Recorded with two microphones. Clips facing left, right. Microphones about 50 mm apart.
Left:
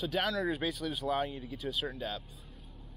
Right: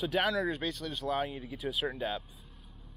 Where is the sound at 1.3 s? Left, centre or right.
Centre.